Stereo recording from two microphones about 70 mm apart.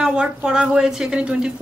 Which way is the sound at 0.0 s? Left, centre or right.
Centre.